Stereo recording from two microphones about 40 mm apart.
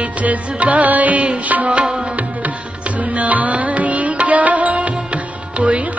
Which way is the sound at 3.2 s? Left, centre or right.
Right.